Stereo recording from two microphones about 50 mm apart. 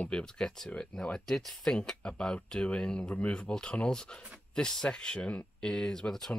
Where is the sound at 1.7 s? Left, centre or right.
Centre.